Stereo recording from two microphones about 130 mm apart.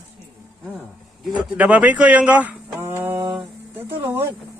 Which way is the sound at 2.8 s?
20° right (ahead or behind).